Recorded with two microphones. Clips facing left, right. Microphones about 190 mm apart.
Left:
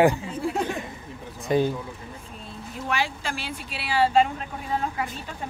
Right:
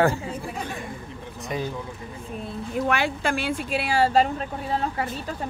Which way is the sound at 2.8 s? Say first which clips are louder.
Right 3 dB; 60° right (ahead or behind).